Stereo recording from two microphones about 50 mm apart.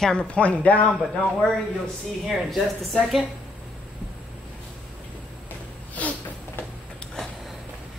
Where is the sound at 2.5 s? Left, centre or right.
Centre.